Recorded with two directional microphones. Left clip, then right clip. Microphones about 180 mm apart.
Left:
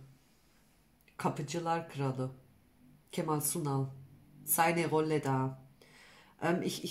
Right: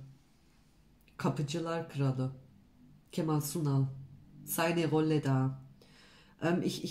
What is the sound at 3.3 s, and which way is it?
Speech, 25° left (ahead or behind).